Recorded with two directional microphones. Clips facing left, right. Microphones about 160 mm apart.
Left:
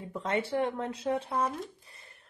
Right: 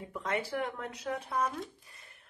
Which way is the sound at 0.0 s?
30° left (ahead or behind).